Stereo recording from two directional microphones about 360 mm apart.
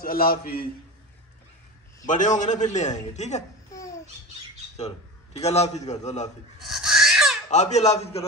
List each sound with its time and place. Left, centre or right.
0.0 s a man's voice: left
2.0 s a child's voice: left
6.6 s a sound: centre
7.4 s a man's voice: centre